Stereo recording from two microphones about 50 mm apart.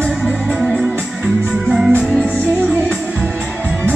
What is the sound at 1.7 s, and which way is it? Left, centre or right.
Music, centre.